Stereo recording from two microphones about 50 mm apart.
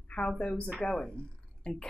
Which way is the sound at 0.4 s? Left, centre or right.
Left.